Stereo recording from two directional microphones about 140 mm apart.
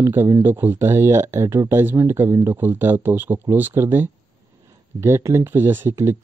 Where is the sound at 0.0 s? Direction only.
20° right (ahead or behind).